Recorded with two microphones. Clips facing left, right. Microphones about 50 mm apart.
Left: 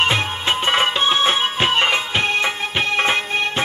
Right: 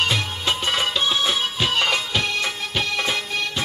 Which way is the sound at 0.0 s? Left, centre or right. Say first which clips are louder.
Left 4 dB; left.